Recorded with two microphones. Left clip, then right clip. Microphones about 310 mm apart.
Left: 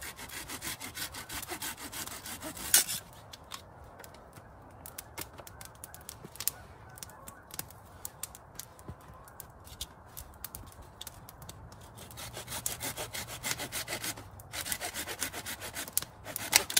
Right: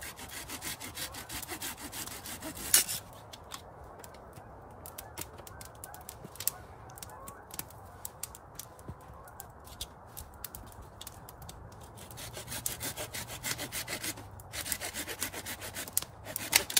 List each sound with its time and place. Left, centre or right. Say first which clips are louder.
0.0 s sawing: left 1 dB; centre
12.2 s sawing: left 1 dB; centre